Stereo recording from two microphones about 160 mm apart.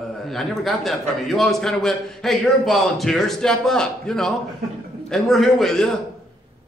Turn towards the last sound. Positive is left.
turn(degrees=5)  # may be behind; listen again after turning